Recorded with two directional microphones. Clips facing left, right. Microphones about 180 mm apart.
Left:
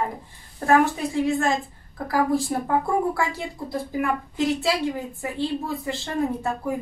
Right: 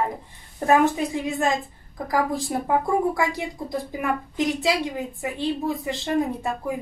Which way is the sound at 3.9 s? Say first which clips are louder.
Left 1 dB; 20° right (ahead or behind).